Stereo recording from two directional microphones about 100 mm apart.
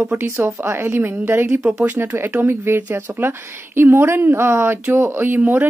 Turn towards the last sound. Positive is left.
turn(degrees=-20)  # may be behind; listen again after turning